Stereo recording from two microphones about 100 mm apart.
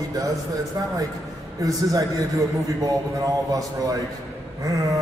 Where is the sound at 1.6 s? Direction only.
35° right (ahead or behind).